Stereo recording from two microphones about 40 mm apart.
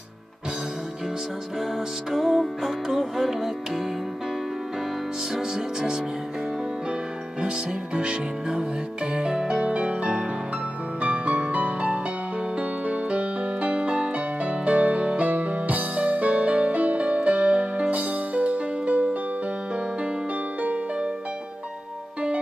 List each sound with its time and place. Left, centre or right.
1.6 s music: centre
5.3 s music: centre
7.5 s music: right